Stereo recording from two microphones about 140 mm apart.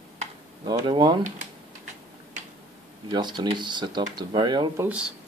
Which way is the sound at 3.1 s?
30° right (ahead or behind).